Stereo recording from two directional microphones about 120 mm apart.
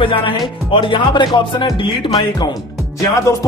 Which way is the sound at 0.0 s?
45° left (ahead or behind).